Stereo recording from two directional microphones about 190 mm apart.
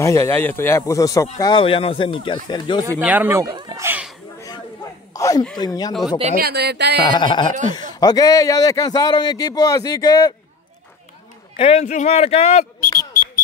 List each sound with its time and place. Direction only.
0.0 s a man's voice: 15° left (ahead or behind)
3.0 s speech: 10° right (ahead or behind)
5.1 s a sound: 20° left (ahead or behind)
5.6 s a man's voice: 20° left (ahead or behind)
6.3 s speech: 55° right (ahead or behind)
7.1 s a man's voice: 25° left (ahead or behind)
11.5 s speech: 30° left (ahead or behind)